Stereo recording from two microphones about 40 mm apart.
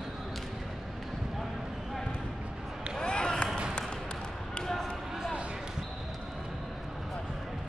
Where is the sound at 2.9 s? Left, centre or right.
Left.